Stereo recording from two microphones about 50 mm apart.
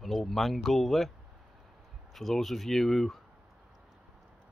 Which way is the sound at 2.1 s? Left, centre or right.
Centre.